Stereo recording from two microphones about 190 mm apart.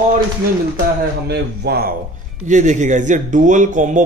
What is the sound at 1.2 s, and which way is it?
Speech, 55° right (ahead or behind).